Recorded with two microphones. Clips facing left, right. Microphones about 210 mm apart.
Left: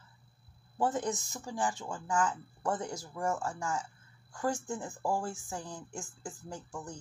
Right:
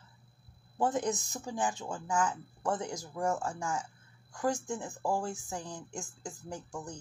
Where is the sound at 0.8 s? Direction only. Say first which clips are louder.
Right 1 dB; 15° right (ahead or behind).